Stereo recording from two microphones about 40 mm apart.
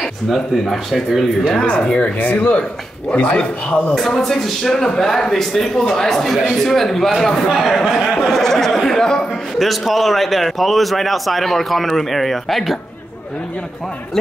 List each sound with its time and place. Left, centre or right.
0.0 s a man's voice: centre
1.7 s speech: left
2.1 s speech: left
3.1 s speech: left
3.9 s a man's voice: centre
9.6 s a man's voice: centre